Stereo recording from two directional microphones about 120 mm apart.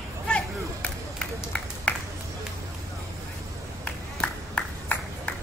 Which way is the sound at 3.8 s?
10° left (ahead or behind).